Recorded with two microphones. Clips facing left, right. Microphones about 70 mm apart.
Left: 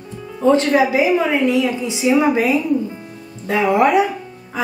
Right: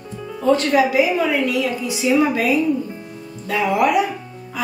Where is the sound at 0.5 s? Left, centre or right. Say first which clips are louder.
Left 2 dB; left.